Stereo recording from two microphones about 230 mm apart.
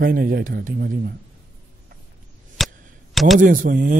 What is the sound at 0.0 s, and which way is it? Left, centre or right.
A man's voice, right.